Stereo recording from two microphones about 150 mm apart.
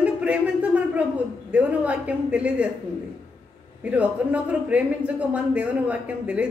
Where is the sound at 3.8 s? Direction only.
10° right (ahead or behind).